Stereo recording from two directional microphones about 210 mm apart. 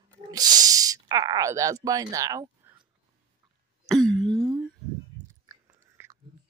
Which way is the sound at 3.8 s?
Centre (ahead or behind).